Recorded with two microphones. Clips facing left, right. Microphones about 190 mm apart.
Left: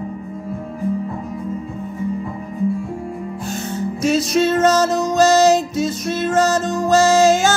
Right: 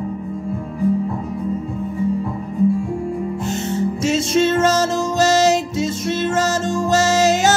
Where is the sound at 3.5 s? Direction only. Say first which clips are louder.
Right 2 dB; 25° right (ahead or behind).